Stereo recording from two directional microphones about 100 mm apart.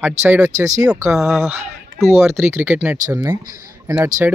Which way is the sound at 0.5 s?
35° right (ahead or behind).